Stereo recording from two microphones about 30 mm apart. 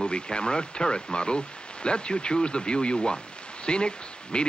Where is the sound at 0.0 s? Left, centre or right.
Left.